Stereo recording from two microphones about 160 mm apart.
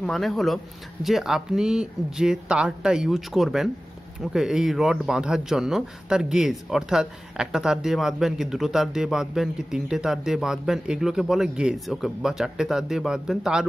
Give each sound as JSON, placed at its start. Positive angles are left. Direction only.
{"t": 0.0, "sound": "a man's voice", "side_deg": 0}